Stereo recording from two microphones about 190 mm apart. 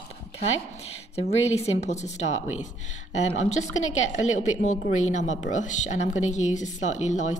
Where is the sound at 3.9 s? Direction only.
40° left (ahead or behind).